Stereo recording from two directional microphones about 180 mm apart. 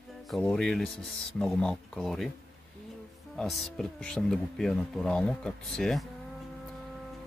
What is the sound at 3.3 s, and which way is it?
Speech, centre (ahead or behind).